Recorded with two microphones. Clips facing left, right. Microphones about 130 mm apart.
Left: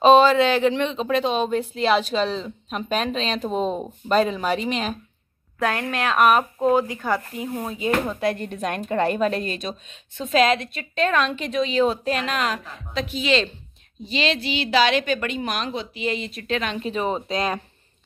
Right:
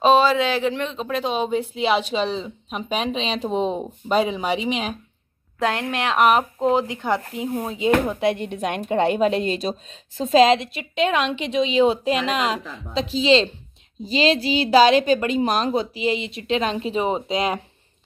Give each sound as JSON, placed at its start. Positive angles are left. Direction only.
{"t": 0.0, "sound": "a woman's voice", "side_deg": -5}
{"t": 16.0, "sound": "a woman's voice", "side_deg": -25}